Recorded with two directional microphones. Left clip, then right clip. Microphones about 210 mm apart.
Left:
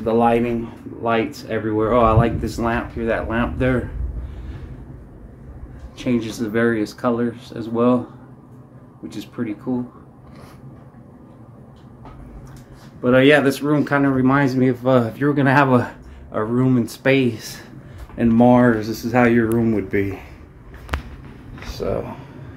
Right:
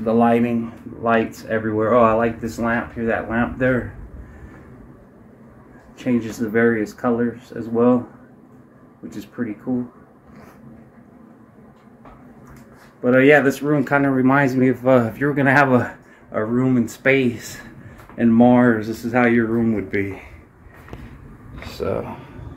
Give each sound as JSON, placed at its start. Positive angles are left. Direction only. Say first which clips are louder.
{"t": 0.0, "sound": "speech", "louder": "even", "side_deg": 0}
{"t": 5.9, "sound": "speech", "louder": "even", "side_deg": 0}
{"t": 9.4, "sound": "speech", "louder": "left 1 dB", "side_deg": 0}
{"t": 13.0, "sound": "speech", "louder": "even", "side_deg": 0}
{"t": 21.7, "sound": "speech", "louder": "even", "side_deg": 5}